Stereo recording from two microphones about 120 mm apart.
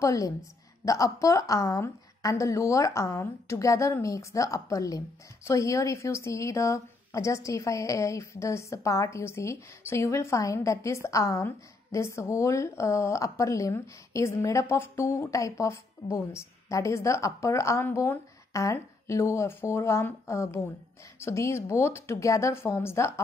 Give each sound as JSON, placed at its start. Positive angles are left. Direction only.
{"t": 0.0, "sound": "a woman's voice", "side_deg": 30}